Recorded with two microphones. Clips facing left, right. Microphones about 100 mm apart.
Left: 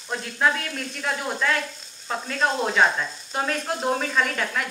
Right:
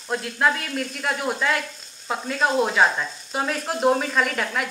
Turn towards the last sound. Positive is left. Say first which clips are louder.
# right 1 dB
turn(degrees=-5)  # may be behind; listen again after turning